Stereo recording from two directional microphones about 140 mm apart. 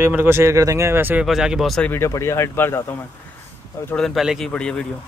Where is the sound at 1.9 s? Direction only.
20° left (ahead or behind).